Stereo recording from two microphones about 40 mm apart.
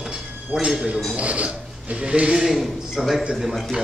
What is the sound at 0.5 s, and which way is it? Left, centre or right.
Speech, right.